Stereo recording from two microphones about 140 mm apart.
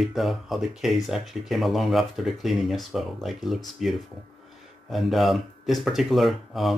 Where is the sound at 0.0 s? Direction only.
Centre (ahead or behind).